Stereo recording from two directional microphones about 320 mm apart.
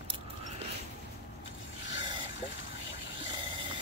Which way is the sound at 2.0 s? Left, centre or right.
Centre.